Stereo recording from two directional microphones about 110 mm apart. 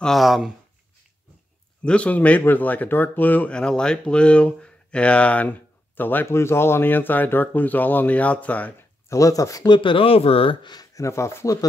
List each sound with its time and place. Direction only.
0.0 s speech: centre (ahead or behind)
1.9 s speech: 10° left (ahead or behind)
9.1 s speech: 30° left (ahead or behind)
9.8 s speech: 50° left (ahead or behind); by 11.6 s 25° left (ahead or behind)